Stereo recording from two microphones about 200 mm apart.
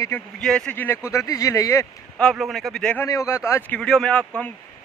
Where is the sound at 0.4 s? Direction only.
5° left (ahead or behind).